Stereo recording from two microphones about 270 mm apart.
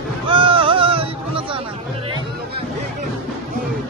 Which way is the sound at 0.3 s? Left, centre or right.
Centre.